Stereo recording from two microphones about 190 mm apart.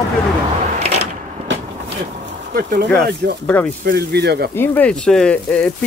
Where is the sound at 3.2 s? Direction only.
55° right (ahead or behind).